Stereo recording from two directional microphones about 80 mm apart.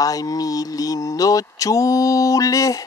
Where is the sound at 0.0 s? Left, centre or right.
Left.